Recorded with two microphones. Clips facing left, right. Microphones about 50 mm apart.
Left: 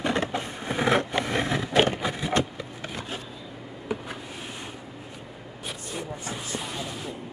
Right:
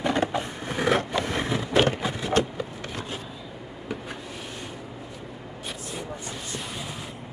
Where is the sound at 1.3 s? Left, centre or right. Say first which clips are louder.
Left 1 dB; left.